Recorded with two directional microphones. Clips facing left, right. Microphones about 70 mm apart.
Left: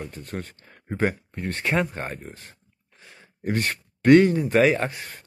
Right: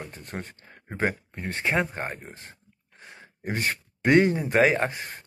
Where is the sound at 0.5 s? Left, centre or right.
Centre; by 3.2 s right.